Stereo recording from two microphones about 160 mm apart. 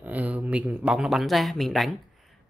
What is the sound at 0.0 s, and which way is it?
Speech, 10° right (ahead or behind).